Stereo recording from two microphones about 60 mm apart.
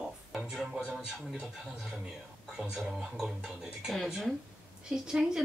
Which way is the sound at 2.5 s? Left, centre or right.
Centre.